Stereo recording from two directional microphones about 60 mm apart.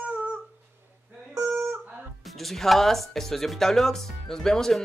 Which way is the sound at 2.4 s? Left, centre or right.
Centre.